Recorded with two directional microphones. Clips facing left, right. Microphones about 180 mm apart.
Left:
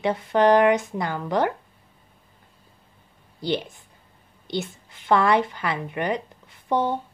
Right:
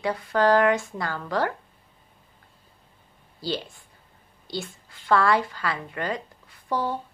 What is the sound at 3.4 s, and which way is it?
A woman's voice, 20° left (ahead or behind).